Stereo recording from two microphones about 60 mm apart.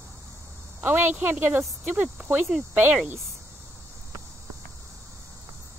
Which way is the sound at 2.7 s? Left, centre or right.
Right.